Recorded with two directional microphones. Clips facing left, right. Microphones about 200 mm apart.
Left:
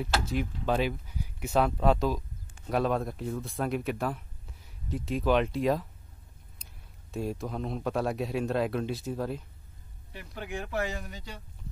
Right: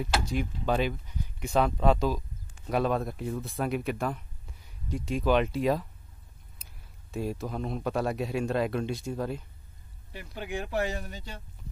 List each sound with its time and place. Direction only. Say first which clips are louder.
0.2 s speech: even; centre (ahead or behind)
10.7 s speech: right 2 dB; 30° right (ahead or behind)